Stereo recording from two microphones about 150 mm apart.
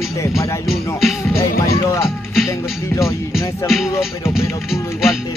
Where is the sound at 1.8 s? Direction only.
15° left (ahead or behind).